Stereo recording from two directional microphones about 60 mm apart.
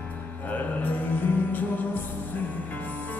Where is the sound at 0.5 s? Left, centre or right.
Left.